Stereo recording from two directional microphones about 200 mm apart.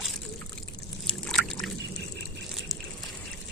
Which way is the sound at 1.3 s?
Centre (ahead or behind).